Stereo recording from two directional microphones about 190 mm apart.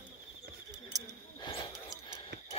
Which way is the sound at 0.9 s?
20° right (ahead or behind).